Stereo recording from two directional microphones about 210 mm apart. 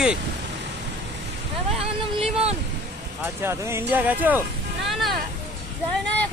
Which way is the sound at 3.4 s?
10° right (ahead or behind).